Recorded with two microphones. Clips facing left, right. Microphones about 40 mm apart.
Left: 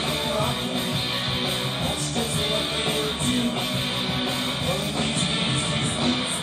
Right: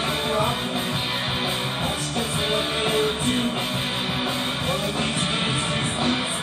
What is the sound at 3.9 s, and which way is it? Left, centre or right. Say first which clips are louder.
Music: right 1 dB; centre.